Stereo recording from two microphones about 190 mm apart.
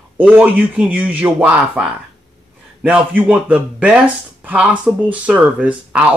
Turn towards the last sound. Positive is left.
turn(degrees=-5)  # may be behind; listen again after turning